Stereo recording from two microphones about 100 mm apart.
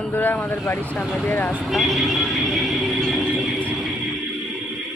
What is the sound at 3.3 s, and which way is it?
Music, centre (ahead or behind).